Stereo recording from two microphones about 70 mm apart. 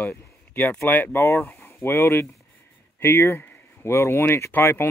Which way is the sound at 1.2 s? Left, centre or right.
Left.